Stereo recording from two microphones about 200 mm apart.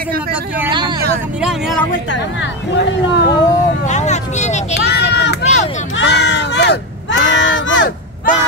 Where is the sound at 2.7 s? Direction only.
60° left (ahead or behind).